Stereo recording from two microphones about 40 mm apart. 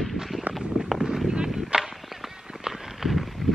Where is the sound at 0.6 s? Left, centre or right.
Centre.